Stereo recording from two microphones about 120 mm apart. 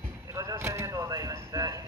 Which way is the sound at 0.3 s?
25° right (ahead or behind).